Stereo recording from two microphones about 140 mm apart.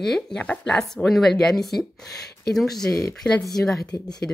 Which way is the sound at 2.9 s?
25° left (ahead or behind).